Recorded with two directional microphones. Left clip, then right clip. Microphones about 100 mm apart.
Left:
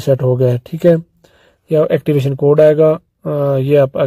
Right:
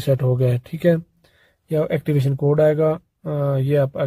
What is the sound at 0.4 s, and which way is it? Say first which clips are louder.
Speech: left 8 dB; 25° left (ahead or behind).